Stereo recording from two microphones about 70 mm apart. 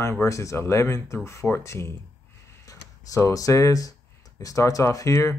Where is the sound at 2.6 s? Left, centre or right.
Left.